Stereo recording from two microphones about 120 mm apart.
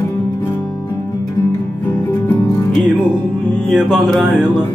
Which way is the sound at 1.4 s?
20° left (ahead or behind).